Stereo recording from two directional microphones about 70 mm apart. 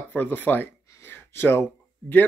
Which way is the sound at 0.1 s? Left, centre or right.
Left.